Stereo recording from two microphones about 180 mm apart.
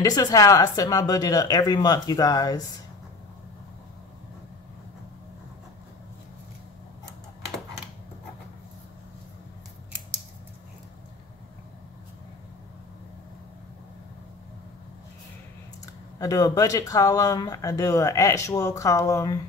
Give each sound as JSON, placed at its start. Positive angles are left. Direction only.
{"t": 0.0, "sound": "speech", "side_deg": 20}
{"t": 15.8, "sound": "speech", "side_deg": 20}